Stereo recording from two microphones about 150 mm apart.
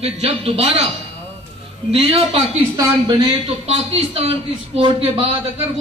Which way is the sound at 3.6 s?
45° right (ahead or behind).